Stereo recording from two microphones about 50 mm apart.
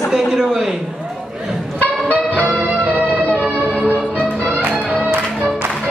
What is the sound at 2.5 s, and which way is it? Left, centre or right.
Music, right.